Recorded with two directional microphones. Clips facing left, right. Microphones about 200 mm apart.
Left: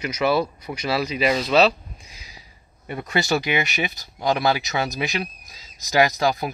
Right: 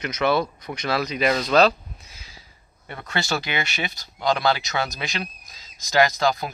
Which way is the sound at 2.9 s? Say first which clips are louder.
Left 4 dB; 15° left (ahead or behind).